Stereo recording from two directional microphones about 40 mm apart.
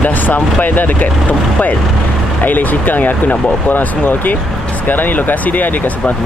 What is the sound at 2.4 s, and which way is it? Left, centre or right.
Speech, left.